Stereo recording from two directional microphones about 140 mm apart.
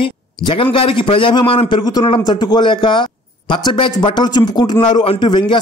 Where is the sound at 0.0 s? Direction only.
35° left (ahead or behind).